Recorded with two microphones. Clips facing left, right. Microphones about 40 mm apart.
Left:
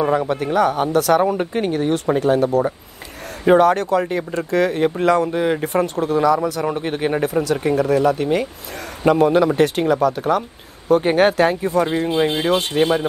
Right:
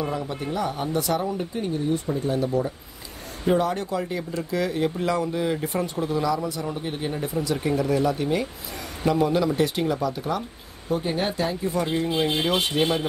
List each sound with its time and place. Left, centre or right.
0.0 s speech: left
6.4 s speech: left
6.7 s speech: left